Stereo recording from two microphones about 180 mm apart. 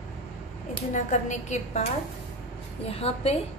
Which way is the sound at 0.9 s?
40° left (ahead or behind).